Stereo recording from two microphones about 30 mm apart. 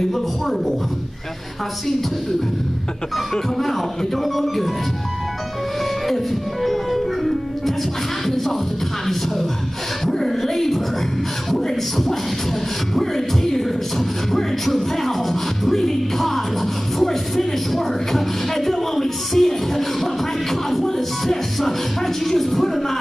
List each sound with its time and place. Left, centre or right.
0.1 s speech: centre
4.1 s speech: centre
6.0 s music: centre
10.0 s speech: centre
21.5 s speech: centre